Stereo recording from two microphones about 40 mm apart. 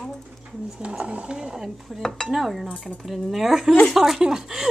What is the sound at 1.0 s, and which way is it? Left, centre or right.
Speech, right.